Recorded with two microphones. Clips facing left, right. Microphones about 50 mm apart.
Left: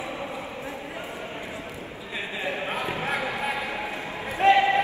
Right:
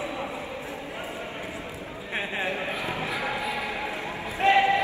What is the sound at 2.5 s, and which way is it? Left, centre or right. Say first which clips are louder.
Basketball bounce: left 1 dB; left.